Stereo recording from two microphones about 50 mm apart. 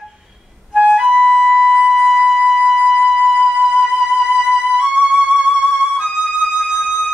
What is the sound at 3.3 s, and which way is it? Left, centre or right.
Music, centre.